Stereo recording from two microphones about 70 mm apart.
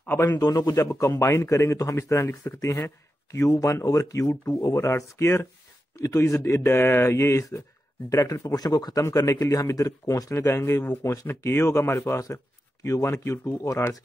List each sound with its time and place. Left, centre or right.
0.2 s speech: left
2.2 s speech: left
2.6 s speech: left
5.9 s speech: left
8.5 s speech: left
9.1 s speech: left
10.3 s speech: left